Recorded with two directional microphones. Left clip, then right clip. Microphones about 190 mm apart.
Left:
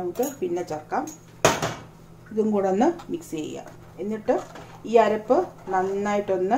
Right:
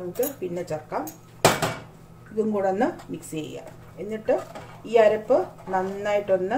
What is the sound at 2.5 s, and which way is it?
Speech, 35° left (ahead or behind).